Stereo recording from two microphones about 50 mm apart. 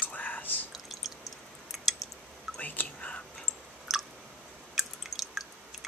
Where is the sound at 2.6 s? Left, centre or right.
Left.